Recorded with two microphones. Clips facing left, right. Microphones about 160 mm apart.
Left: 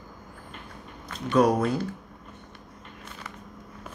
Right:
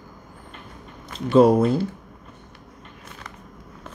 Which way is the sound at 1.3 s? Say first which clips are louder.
Right 6 dB; 25° right (ahead or behind).